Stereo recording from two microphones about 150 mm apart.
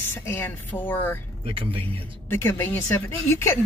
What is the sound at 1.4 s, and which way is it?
Speech, 40° right (ahead or behind).